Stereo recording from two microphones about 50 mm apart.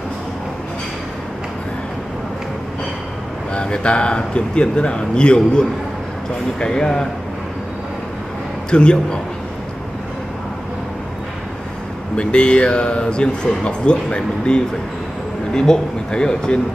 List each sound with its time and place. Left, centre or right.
3.5 s a man's voice: centre
8.6 s a man's voice: centre
12.2 s a man's voice: left